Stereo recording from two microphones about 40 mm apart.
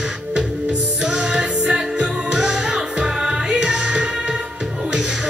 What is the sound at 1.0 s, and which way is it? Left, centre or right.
Music, centre.